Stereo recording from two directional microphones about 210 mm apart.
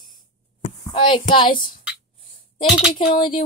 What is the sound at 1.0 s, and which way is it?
Speech, 25° left (ahead or behind).